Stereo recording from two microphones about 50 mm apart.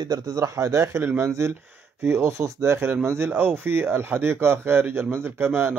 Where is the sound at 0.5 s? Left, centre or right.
Right.